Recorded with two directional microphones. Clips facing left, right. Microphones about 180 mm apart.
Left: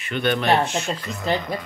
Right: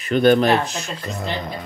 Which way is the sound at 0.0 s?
40° right (ahead or behind).